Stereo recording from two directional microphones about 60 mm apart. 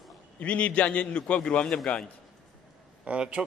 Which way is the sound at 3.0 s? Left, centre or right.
Centre.